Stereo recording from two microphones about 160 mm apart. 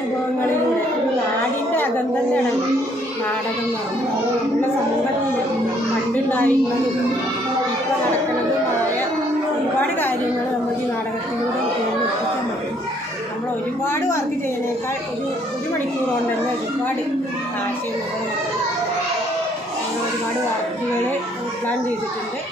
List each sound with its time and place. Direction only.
6.1 s a woman's voice: 10° left (ahead or behind)
9.8 s a woman's voice: 10° left (ahead or behind)
13.8 s a woman's voice: 15° left (ahead or behind)